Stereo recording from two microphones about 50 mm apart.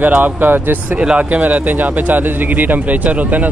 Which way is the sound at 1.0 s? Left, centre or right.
Centre.